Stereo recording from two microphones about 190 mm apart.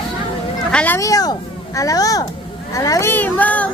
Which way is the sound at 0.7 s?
10° left (ahead or behind).